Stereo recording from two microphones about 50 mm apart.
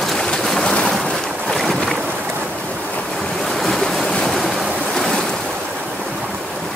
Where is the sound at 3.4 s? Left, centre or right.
Centre.